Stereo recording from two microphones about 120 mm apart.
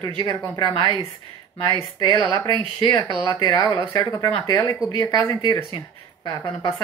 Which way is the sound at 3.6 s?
45° right (ahead or behind).